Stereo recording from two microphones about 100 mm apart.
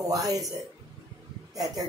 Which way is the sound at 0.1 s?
35° right (ahead or behind).